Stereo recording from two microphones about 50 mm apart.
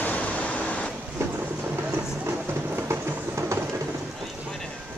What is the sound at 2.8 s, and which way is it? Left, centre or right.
Train, right.